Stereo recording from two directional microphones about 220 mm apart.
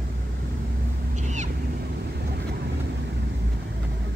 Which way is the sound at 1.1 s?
35° right (ahead or behind).